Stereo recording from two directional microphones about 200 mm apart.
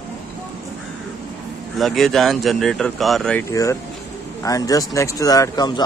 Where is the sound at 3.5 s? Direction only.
15° left (ahead or behind).